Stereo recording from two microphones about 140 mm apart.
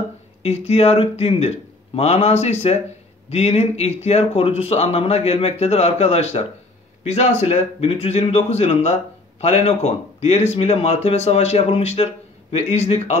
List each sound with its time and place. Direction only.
0.4 s speech: 45° left (ahead or behind)